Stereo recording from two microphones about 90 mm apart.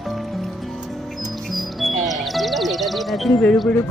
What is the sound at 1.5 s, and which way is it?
Music, centre (ahead or behind).